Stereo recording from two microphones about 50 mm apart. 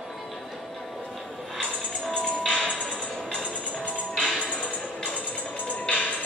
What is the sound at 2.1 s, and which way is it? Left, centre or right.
Music, centre.